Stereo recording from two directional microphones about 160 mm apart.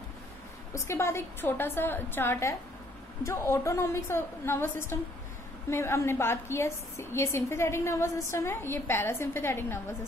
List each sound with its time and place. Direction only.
0.7 s a woman's voice: 15° left (ahead or behind)